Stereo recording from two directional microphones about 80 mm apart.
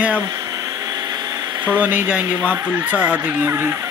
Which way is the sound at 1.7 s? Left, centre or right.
Centre.